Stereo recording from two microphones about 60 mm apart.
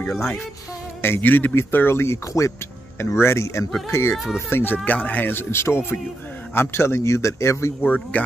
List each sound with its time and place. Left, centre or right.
1.0 s speech: left
2.3 s speech: left
3.0 s a man's voice: left
4.7 s speech: left
5.3 s a man's voice: left
7.8 s speech: left